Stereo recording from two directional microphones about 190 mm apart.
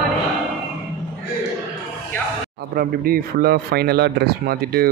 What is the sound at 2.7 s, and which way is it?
Speech, 50° right (ahead or behind).